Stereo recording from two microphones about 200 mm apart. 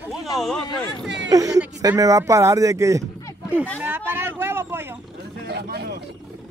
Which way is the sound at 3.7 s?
10° right (ahead or behind).